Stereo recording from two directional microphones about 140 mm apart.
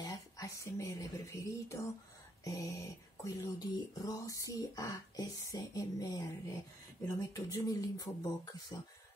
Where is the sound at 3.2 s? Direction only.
25° left (ahead or behind).